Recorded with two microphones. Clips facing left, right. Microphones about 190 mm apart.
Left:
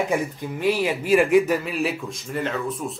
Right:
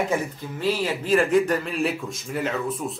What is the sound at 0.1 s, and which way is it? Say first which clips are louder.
Speech: left 2 dB; 15° left (ahead or behind).